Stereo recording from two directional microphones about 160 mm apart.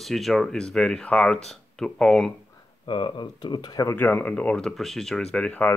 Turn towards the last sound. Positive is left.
turn(degrees=10)  # may be behind; listen again after turning